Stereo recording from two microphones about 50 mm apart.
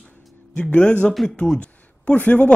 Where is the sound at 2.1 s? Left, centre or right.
Left.